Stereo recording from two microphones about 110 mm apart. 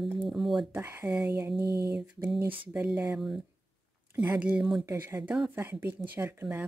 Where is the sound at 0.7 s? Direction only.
20° right (ahead or behind).